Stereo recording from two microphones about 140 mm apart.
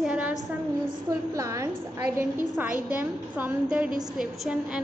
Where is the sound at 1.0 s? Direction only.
25° right (ahead or behind).